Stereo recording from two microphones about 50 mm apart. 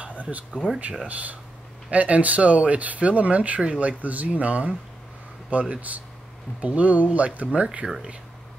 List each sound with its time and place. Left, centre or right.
0.2 s speech: right
7.8 s speech: centre